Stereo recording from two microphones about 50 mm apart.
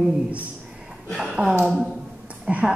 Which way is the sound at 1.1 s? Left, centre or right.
Centre.